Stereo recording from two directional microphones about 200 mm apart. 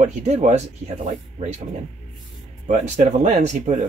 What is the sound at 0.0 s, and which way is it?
Speech, 35° right (ahead or behind).